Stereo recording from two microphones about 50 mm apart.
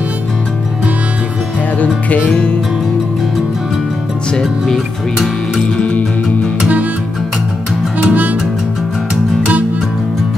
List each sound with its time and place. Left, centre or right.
1.8 s music: left
4.3 s speech: centre
5.8 s music: left
8.0 s music: right